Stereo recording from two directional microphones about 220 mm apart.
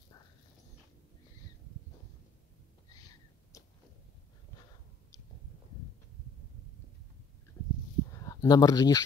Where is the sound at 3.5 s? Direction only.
15° left (ahead or behind).